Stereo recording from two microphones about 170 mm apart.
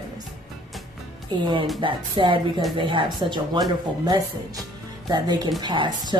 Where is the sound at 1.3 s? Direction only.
25° right (ahead or behind).